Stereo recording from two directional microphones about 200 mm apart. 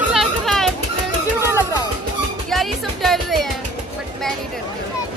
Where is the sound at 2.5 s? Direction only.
Centre (ahead or behind).